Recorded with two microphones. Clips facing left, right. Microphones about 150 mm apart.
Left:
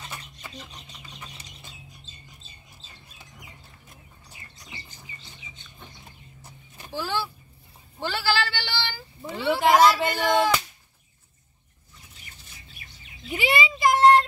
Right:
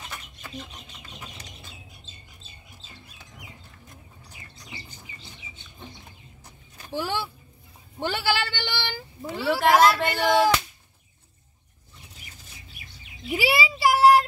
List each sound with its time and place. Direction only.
0.4 s bird: centre (ahead or behind)
6.9 s a man's voice: 20° right (ahead or behind)
8.5 s child singing: 20° right (ahead or behind)
9.2 s a sound: centre (ahead or behind)
13.3 s child singing: 5° right (ahead or behind)